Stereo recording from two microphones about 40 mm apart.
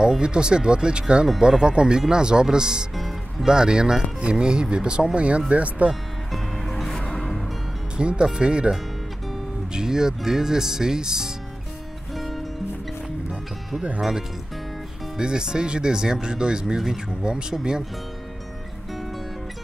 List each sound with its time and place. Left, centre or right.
0.0 s speech: right
3.0 s music: centre
3.4 s speech: centre
6.7 s music: centre
8.0 s speech: right
9.8 s speech: centre
12.2 s music: centre
15.1 s speech: centre